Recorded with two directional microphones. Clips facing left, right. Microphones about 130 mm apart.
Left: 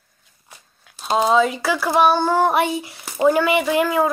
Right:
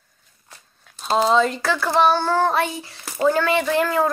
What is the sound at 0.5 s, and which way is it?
A child's voice, 5° left (ahead or behind).